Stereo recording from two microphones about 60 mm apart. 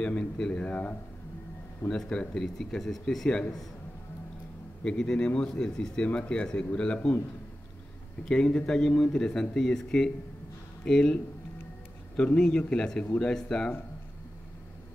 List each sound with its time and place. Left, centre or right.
0.0 s speech: centre
1.9 s speech: centre
4.8 s speech: centre
8.3 s speech: centre
12.2 s speech: centre